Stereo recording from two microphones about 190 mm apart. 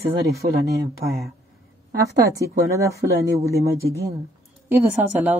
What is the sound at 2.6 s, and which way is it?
Speech, 15° right (ahead or behind).